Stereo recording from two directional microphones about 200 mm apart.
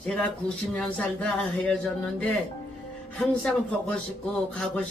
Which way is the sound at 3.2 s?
5° left (ahead or behind).